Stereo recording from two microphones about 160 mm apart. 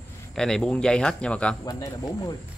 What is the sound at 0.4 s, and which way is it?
Speech, 5° left (ahead or behind).